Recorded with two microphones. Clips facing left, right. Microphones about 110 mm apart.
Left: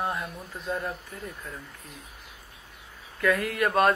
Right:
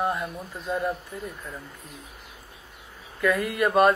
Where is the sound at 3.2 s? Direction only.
Centre (ahead or behind).